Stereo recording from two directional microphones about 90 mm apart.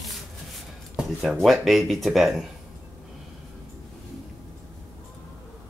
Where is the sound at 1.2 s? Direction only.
Centre (ahead or behind).